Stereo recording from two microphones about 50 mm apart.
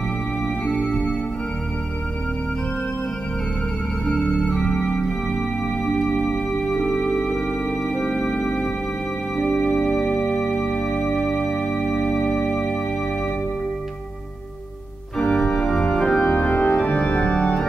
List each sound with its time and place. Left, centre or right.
0.7 s music: centre
4.1 s organ: centre
6.3 s music: centre
15.2 s organ: centre
16.3 s organ: left